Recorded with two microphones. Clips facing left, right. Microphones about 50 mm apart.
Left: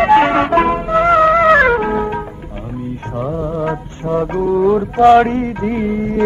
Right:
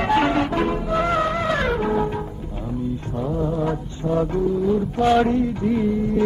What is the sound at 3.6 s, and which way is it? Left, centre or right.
Music, left.